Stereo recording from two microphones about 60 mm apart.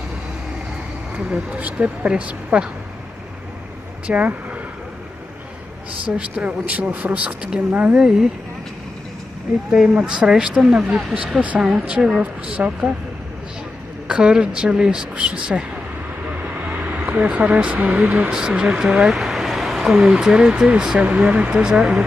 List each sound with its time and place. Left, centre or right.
1.1 s speech: right
4.1 s speech: right
6.1 s speech: centre
9.7 s speech: centre
14.0 s speech: centre
16.6 s a sound: right
17.1 s speech: centre
18.3 s speech: centre